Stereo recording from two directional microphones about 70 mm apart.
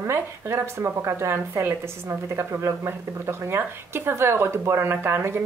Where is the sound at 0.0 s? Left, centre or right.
Right.